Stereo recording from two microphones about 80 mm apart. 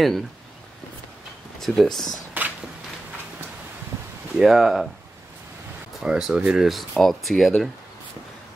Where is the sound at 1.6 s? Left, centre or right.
Centre.